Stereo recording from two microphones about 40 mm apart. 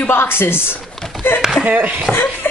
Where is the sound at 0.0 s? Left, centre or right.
Left.